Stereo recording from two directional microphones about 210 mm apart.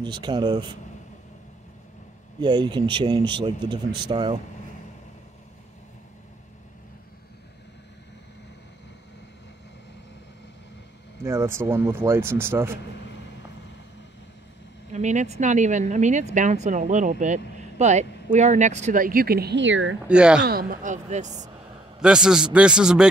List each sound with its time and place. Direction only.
0.0 s speech: 20° right (ahead or behind)
2.4 s speech: 20° right (ahead or behind)
11.2 s speech: 10° right (ahead or behind)
14.9 s speech: 35° right (ahead or behind); by 20.0 s 65° right (ahead or behind)
20.1 s a man's voice: 5° right (ahead or behind)
20.4 s speech: 45° right (ahead or behind)
22.0 s a man's voice: 5° right (ahead or behind)